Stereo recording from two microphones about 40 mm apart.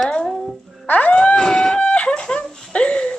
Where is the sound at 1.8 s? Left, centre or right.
Left.